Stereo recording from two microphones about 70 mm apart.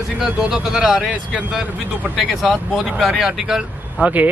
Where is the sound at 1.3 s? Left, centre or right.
Centre.